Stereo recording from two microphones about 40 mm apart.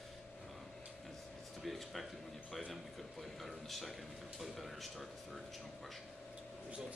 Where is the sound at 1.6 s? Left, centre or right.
Centre.